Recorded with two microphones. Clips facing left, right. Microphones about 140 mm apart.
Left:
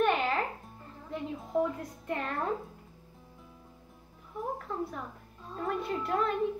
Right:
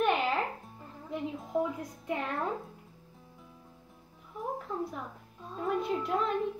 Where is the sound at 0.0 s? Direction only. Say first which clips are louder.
Left 1 dB; centre (ahead or behind).